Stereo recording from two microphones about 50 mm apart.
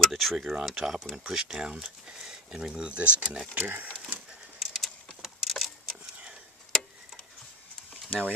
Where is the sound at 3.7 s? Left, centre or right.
Right.